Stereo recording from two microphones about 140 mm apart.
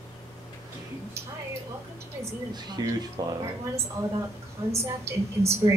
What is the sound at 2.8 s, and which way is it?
Speech, 30° right (ahead or behind).